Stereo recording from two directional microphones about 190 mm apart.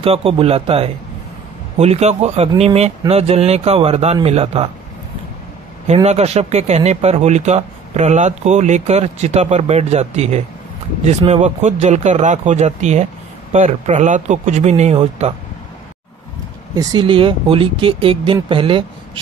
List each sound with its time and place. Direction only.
0.0 s speech: 30° right (ahead or behind)
6.0 s speech: 35° right (ahead or behind)
16.7 s speech: 25° right (ahead or behind)